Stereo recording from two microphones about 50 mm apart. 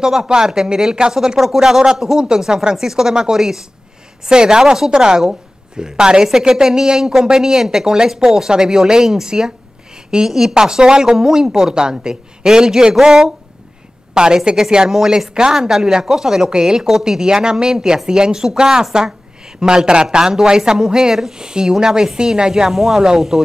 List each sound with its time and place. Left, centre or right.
0.0 s speech: centre